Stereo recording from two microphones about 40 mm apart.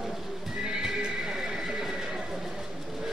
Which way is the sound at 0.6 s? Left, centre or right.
Centre.